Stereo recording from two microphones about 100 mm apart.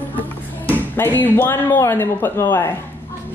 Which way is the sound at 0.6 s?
20° left (ahead or behind).